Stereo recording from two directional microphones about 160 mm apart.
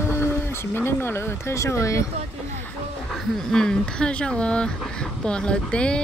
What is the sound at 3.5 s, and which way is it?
Speech, 5° left (ahead or behind).